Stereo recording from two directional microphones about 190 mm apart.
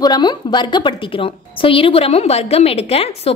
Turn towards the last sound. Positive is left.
turn(degrees=30)  # may be behind; listen again after turning